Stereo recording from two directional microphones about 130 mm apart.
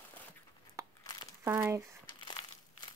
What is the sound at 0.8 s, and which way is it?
Crumpling, 25° right (ahead or behind).